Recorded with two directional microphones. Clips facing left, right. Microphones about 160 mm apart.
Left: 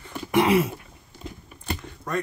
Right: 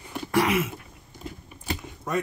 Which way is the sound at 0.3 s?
30° left (ahead or behind).